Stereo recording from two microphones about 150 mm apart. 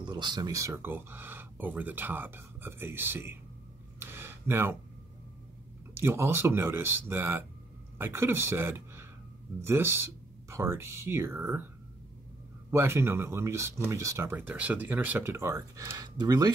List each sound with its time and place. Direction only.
0.0 s speech: 30° right (ahead or behind); by 3.3 s 15° right (ahead or behind)
4.0 s a sound: 15° right (ahead or behind)
5.9 s speech: 15° right (ahead or behind)
12.7 s speech: 15° right (ahead or behind)